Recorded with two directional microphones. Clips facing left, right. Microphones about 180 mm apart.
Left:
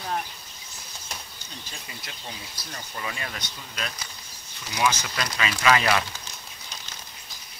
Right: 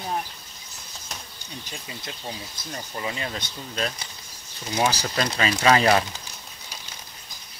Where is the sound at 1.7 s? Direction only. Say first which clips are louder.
Right 6 dB; 25° right (ahead or behind).